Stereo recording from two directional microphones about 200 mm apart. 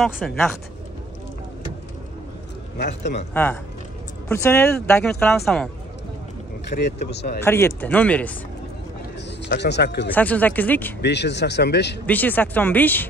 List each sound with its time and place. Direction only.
0.2 s speech: 5° left (ahead or behind)
2.8 s speech: 60° left (ahead or behind)
4.3 s speech: 10° left (ahead or behind)
6.7 s speech: 55° left (ahead or behind)
7.4 s speech: 10° left (ahead or behind)
9.4 s speech: 60° left (ahead or behind)
10.1 s speech: 10° left (ahead or behind)
11.0 s speech: 60° left (ahead or behind)
12.1 s speech: 10° left (ahead or behind)